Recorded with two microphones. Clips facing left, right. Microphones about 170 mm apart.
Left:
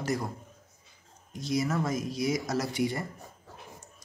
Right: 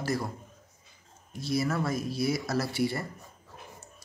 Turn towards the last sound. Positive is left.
turn(degrees=15)  # may be behind; listen again after turning